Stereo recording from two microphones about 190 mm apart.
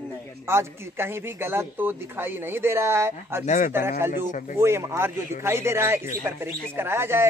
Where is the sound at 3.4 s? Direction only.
40° left (ahead or behind).